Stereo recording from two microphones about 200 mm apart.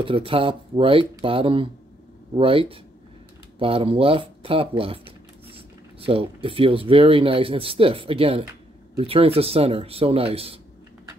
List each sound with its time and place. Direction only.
0.0 s speech: 25° right (ahead or behind)